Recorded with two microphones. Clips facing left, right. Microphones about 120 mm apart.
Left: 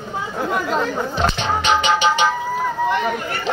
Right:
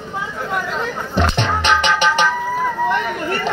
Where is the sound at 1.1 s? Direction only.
65° right (ahead or behind).